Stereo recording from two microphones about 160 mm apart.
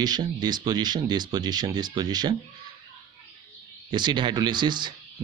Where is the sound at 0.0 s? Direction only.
25° right (ahead or behind).